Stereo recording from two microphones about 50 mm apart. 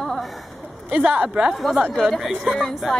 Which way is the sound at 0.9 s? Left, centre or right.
Right.